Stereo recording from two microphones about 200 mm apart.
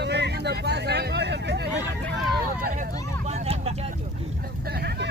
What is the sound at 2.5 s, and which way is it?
Vehicle, 45° right (ahead or behind).